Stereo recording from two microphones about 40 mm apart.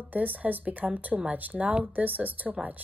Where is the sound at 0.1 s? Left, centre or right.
Right.